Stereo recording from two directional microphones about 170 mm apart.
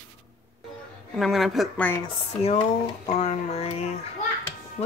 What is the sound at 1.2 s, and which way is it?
Speech, centre (ahead or behind).